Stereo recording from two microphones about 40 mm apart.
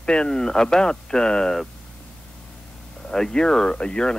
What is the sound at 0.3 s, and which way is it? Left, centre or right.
Speech, centre.